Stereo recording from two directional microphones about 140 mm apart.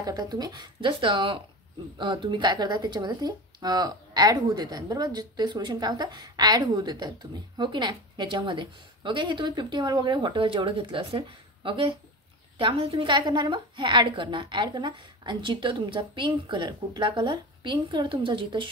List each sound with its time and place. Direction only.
0.0 s a woman's voice: 30° right (ahead or behind)